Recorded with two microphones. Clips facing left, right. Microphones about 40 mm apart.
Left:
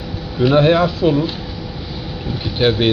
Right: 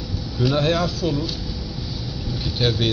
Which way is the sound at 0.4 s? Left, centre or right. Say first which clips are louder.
Left 8 dB; left.